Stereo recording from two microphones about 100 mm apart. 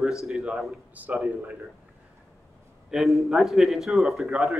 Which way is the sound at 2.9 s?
Centre (ahead or behind).